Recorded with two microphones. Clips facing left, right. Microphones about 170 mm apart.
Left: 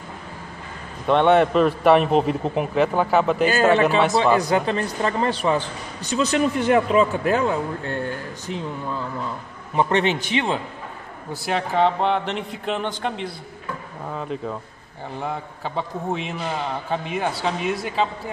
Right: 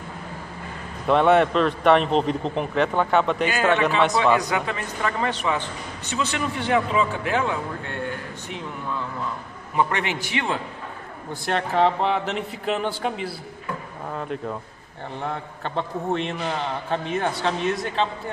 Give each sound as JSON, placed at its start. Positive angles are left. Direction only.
{"t": 1.0, "sound": "a man's voice", "side_deg": 0}
{"t": 4.2, "sound": "a man's voice", "side_deg": 35}
{"t": 9.8, "sound": "a man's voice", "side_deg": 25}
{"t": 11.4, "sound": "a man's voice", "side_deg": 0}